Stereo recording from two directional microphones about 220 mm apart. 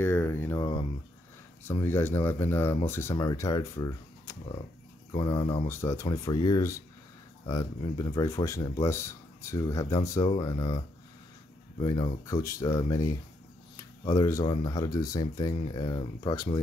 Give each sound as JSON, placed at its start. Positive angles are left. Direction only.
{"t": 0.0, "sound": "speech", "side_deg": 10}
{"t": 11.8, "sound": "speech", "side_deg": 15}